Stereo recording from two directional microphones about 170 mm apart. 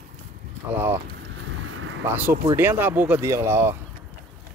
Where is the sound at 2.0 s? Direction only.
10° right (ahead or behind).